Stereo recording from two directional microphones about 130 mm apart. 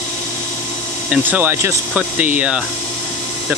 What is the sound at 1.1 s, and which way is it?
Speech, 15° right (ahead or behind).